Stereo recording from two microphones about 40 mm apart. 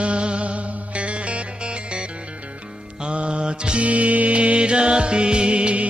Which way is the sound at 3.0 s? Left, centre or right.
Right.